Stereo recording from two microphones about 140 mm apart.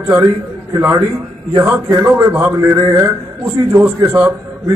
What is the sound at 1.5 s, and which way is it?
A man's voice, 20° right (ahead or behind).